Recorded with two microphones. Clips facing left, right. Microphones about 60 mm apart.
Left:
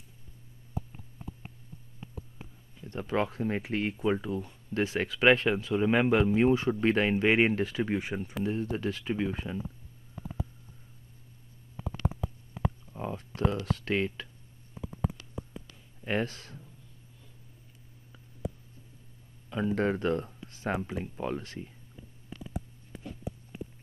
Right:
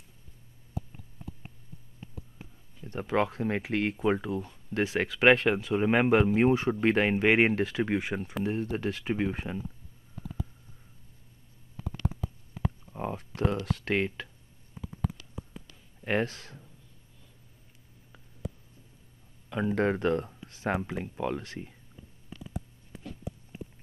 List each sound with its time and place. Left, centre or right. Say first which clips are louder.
2.9 s speech: right 2 dB; right
4.0 s speech: right 1 dB; right
10.1 s a sound: left 1 dB; left
12.9 s a sound: right 2 dB; right
13.7 s speech: right 1 dB; right
16.1 s speech: right 2 dB; right
19.7 s speech: right 2 dB; right